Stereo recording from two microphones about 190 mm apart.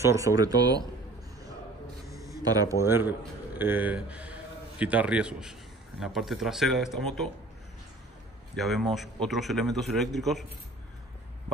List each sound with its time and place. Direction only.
0.0 s speech: 15° right (ahead or behind)
2.0 s a man's voice: 15° right (ahead or behind); by 7.0 s centre (ahead or behind)
8.5 s a man's voice: centre (ahead or behind)